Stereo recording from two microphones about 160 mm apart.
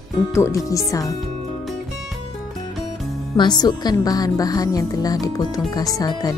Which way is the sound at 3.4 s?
25° left (ahead or behind).